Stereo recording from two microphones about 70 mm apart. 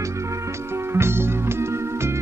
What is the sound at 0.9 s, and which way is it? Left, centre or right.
Music, right.